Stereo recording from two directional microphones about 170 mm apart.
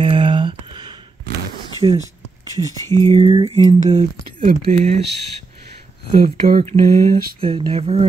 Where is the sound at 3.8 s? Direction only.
45° right (ahead or behind).